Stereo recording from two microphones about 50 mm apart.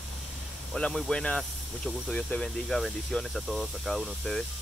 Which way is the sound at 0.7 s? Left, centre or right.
Left.